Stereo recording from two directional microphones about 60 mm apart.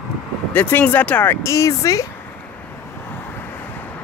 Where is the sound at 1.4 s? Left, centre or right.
Left.